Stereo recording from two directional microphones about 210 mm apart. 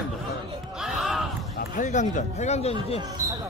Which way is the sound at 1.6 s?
35° left (ahead or behind).